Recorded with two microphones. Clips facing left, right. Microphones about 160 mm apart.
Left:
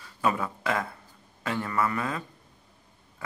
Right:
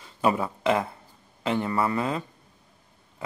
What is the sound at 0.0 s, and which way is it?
A man's voice, 25° right (ahead or behind).